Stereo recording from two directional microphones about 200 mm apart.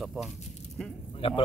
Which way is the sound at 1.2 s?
30° left (ahead or behind).